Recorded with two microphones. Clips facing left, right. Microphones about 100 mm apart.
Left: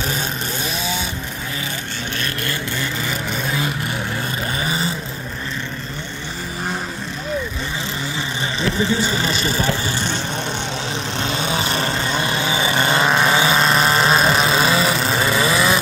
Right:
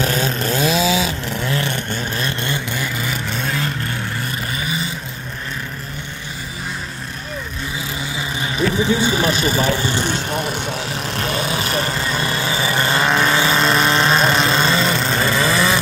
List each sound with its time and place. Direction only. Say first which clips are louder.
0.7 s a sound: right 10 dB; 90° right
2.1 s vehicle: even; 25° right (ahead or behind)
3.1 s vehicle: even; 5° left (ahead or behind)
9.0 s vehicle: right 3 dB; 15° right (ahead or behind)
12.1 s vehicle: even; 20° left (ahead or behind)
13.0 s vehicle: even; 5° left (ahead or behind)